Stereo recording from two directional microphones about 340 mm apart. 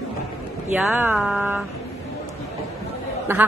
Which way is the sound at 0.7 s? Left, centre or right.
Centre.